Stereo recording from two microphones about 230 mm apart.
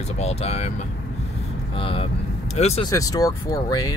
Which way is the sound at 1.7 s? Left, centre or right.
Left.